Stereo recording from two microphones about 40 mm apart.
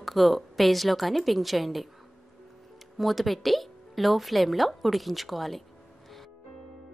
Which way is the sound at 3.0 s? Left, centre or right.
Centre.